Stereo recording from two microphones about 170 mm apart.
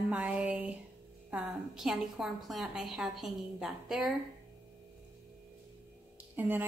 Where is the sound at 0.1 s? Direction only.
10° right (ahead or behind).